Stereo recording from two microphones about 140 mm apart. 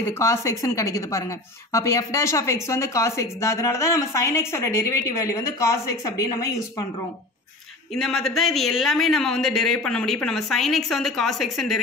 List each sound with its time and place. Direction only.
0.2 s speech: 20° left (ahead or behind)
7.9 s speech: centre (ahead or behind)